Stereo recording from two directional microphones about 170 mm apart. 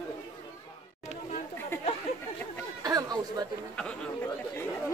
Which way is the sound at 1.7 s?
15° left (ahead or behind).